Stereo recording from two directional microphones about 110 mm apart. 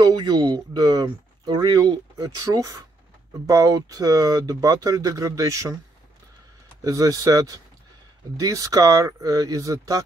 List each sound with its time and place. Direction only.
0.0 s speech: 40° right (ahead or behind)
6.8 s speech: 30° right (ahead or behind)